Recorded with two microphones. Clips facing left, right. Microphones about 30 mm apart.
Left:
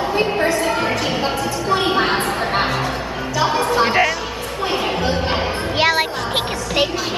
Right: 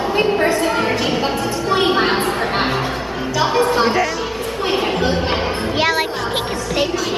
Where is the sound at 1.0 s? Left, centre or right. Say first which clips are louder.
Right 2 dB; centre.